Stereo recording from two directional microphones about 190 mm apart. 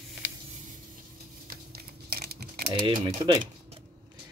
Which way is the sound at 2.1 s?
55° right (ahead or behind).